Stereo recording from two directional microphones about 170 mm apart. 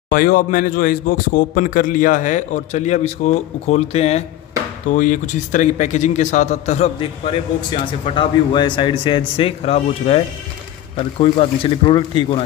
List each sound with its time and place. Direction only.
0.1 s a man's voice: 55° left (ahead or behind); by 4.2 s 40° left (ahead or behind)
4.9 s a man's voice: 50° left (ahead or behind); by 12.4 s 30° left (ahead or behind)